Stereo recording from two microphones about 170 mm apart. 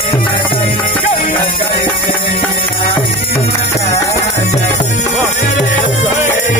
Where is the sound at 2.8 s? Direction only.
30° left (ahead or behind).